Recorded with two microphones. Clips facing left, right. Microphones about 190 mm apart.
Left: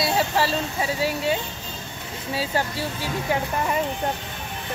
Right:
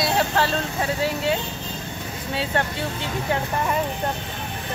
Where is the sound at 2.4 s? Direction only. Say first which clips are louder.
Right 1 dB; 5° left (ahead or behind).